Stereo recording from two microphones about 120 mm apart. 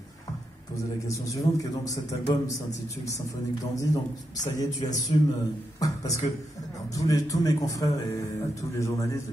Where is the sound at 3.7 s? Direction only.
25° left (ahead or behind).